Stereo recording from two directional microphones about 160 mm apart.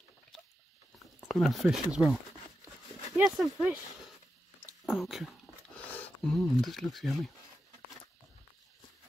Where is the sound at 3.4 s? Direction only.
Centre (ahead or behind).